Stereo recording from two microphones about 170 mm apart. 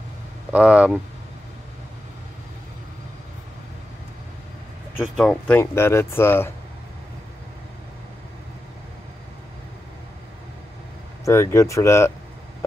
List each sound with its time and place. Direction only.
0.5 s speech: 5° right (ahead or behind)
5.0 s speech: 5° left (ahead or behind)
11.2 s speech: 15° left (ahead or behind)